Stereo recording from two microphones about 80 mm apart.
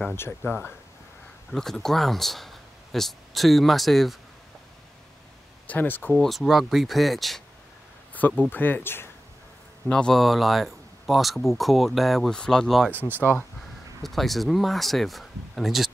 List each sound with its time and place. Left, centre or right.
0.5 s speech: left
1.5 s speech: centre
5.7 s speech: left
6.2 s speech: centre
8.1 s a sound: left
8.5 s speech: left
9.8 s a man's voice: centre
10.1 s speech: centre
13.1 s speech: right
14.0 s speech: centre